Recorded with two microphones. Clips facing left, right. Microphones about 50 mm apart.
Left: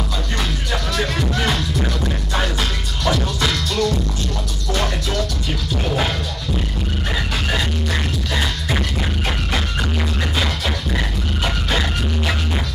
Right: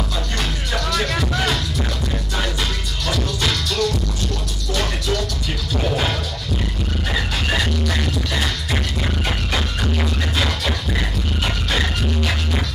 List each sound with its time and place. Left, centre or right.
1.2 s music: left
3.1 s music: left
7.8 s music: centre